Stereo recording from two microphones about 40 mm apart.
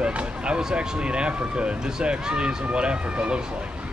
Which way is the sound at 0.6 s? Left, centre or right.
Right.